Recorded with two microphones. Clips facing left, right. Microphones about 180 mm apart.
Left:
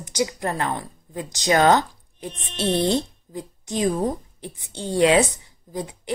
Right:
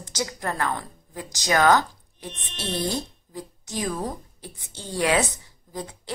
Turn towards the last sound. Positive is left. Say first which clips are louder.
# left 4 dB
turn(degrees=15)  # may be behind; listen again after turning